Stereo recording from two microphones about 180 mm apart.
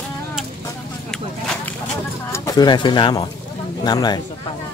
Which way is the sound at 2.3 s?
20° left (ahead or behind).